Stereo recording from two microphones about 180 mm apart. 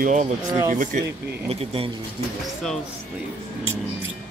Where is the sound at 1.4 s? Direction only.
30° right (ahead or behind).